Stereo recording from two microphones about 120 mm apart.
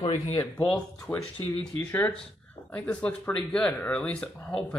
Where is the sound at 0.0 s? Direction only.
50° left (ahead or behind).